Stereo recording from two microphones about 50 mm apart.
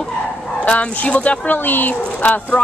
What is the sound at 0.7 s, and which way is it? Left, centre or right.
Speech, left.